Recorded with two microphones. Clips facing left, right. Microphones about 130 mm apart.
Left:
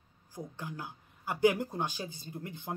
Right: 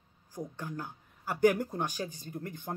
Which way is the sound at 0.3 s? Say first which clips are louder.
Right 3 dB; 10° left (ahead or behind).